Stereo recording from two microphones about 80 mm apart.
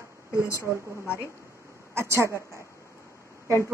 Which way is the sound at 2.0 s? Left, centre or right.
Right.